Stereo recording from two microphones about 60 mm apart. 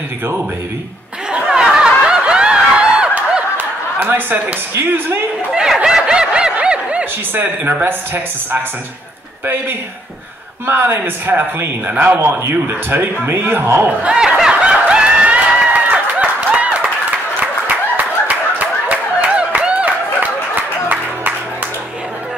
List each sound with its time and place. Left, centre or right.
1.3 s snicker: centre
3.5 s a sound: right
4.7 s a man's voice: right
5.5 s snicker: centre
7.3 s a man's voice: right
10.7 s a man's voice: right
11.9 s speech: right
12.2 s a man's voice: right
13.8 s snicker: centre
15.9 s a sound: right
17.9 s clapping: right